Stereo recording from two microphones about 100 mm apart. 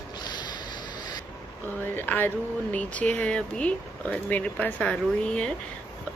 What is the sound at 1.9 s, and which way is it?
Speech, 20° left (ahead or behind).